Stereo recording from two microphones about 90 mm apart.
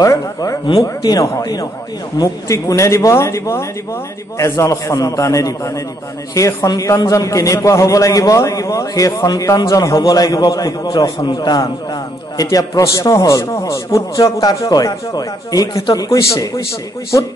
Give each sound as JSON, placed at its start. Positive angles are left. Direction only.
{"t": 0.0, "sound": "a man's voice", "side_deg": 40}